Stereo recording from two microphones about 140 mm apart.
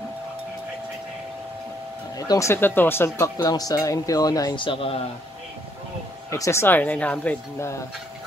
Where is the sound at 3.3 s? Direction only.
25° left (ahead or behind).